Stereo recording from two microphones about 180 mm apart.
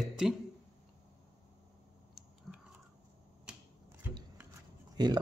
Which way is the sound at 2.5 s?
Centre (ahead or behind).